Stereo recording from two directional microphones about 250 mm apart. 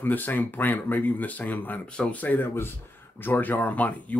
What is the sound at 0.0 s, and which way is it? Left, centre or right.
Speech, centre.